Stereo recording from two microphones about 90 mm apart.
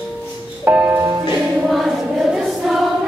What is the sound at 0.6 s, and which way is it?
Music, 20° right (ahead or behind).